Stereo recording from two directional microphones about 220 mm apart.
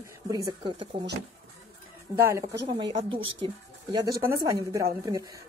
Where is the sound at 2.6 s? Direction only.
25° right (ahead or behind).